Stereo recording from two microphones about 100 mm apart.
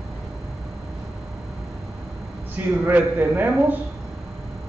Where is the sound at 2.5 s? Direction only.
20° right (ahead or behind).